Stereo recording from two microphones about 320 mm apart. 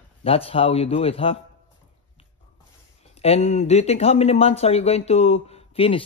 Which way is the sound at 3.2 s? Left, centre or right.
Centre.